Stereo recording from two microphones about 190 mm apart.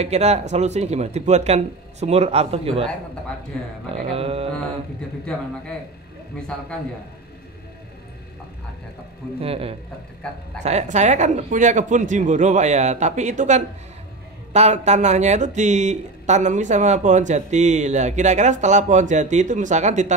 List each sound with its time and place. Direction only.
0.0 s speech: 35° right (ahead or behind)
3.5 s a man's voice: 5° left (ahead or behind)
4.0 s speech: 30° right (ahead or behind)
5.3 s a man's voice: 5° left (ahead or behind)
9.4 s a man's voice: 30° right (ahead or behind)